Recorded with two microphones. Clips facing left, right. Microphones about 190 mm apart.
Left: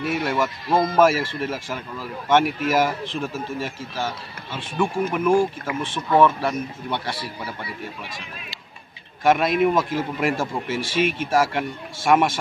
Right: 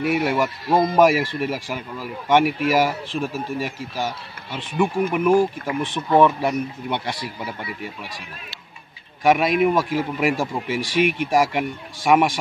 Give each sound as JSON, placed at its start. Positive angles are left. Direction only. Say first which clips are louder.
{"t": 0.0, "sound": "speech", "louder": "right 3 dB", "side_deg": -10}
{"t": 9.2, "sound": "speech", "louder": "right 1 dB", "side_deg": -10}